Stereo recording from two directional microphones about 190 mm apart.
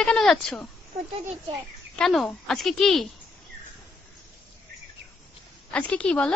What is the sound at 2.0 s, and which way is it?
A woman's voice, centre (ahead or behind).